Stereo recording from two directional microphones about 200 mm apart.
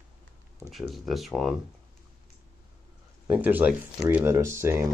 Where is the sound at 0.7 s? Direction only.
Centre (ahead or behind).